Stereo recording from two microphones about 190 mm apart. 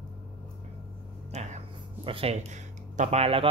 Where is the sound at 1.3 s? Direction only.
35° right (ahead or behind).